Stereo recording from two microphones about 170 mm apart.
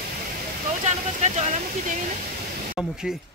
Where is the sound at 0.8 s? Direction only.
40° right (ahead or behind).